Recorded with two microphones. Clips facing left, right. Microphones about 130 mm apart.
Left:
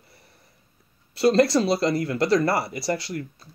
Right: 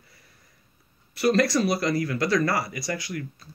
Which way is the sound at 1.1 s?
25° left (ahead or behind).